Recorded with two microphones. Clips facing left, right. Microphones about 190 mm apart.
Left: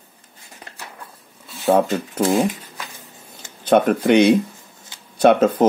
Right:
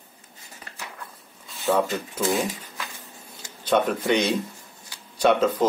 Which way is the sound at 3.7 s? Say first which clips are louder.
Left 7 dB; 60° left (ahead or behind).